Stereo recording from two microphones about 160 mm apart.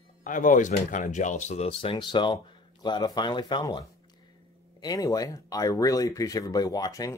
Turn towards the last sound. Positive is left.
turn(degrees=20)  # may be behind; listen again after turning